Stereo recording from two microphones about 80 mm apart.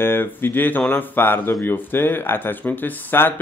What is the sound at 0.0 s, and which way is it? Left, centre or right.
Speech, left.